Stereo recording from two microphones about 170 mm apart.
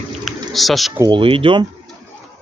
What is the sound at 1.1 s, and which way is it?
Speech, 30° right (ahead or behind).